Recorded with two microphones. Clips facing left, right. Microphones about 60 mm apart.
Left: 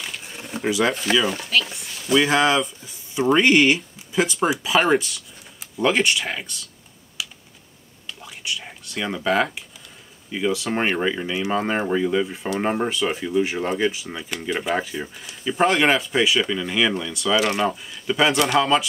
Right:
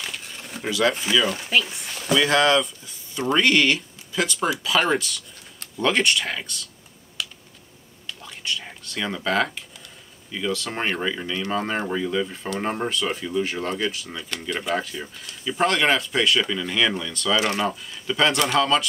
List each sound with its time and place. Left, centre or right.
0.0 s a sound: centre
0.7 s speech: centre
1.4 s speech: centre
2.1 s speech: centre
7.2 s a sound: centre
8.1 s whispering: centre
10.3 s speech: centre